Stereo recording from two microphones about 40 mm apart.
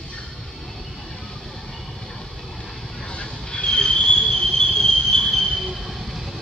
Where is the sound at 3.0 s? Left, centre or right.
Left; by 6.4 s centre.